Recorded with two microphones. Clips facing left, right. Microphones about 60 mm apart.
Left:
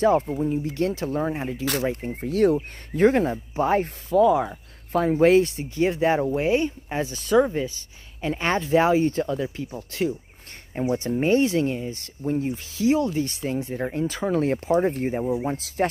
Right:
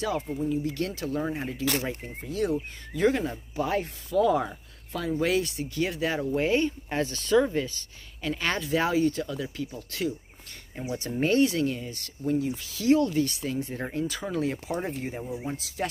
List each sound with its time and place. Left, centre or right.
0.0 s speech: left
2.0 s speech: left
2.9 s speech: left
4.2 s speech: centre
5.2 s speech: left
6.3 s speech: centre; by 11.1 s left
11.1 s speech: left
12.8 s speech: left